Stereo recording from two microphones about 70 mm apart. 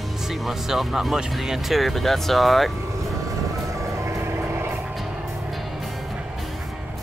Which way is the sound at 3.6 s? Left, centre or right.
Right.